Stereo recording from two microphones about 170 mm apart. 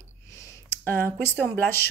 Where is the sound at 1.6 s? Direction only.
10° left (ahead or behind).